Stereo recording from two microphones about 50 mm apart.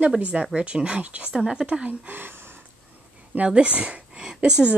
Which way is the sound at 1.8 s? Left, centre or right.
Right.